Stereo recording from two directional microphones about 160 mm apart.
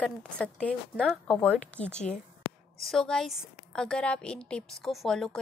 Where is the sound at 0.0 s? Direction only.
5° left (ahead or behind).